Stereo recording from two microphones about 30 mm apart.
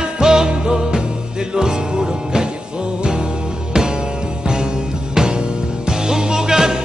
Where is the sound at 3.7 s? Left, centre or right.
Right.